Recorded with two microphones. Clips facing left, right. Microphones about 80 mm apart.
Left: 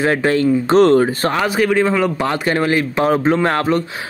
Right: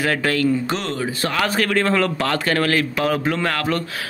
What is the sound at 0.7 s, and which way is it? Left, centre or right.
Speech, left.